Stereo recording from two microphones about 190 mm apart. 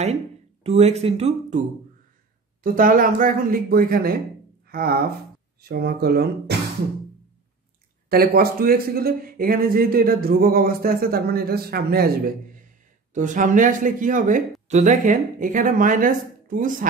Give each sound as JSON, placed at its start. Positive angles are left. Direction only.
{"t": 0.7, "sound": "speech", "side_deg": -35}
{"t": 2.6, "sound": "speech", "side_deg": -45}
{"t": 8.1, "sound": "speech", "side_deg": -50}
{"t": 13.1, "sound": "speech", "side_deg": -40}